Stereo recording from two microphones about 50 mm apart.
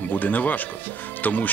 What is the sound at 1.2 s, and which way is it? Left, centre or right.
Music, left.